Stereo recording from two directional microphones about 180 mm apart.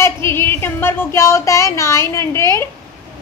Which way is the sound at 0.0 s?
15° left (ahead or behind).